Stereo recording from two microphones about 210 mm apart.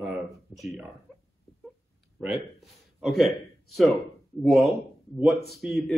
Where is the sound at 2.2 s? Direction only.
Centre (ahead or behind).